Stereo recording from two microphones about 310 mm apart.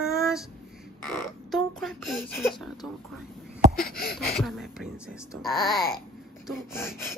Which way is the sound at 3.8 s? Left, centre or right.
Left.